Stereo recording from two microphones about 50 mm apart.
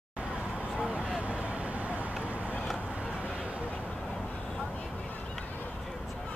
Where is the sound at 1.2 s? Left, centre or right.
Right.